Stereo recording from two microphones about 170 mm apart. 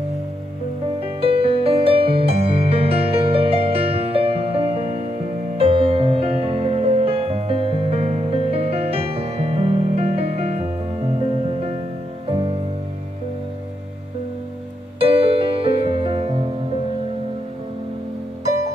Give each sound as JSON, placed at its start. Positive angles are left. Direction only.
{"t": 1.0, "sound": "music", "side_deg": -30}
{"t": 15.0, "sound": "music", "side_deg": -35}